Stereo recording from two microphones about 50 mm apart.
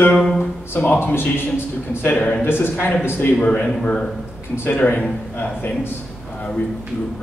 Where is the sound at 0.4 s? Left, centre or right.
Left.